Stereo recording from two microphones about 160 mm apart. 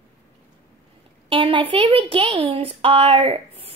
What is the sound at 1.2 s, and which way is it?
A woman's voice, 35° right (ahead or behind).